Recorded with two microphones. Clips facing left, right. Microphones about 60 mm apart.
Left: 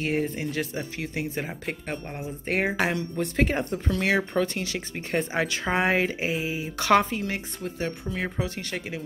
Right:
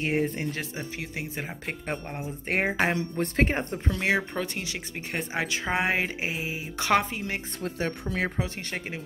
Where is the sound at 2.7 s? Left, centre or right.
Right.